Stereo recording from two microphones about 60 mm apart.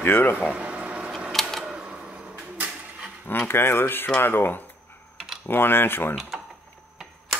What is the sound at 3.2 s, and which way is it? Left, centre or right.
Speech, left.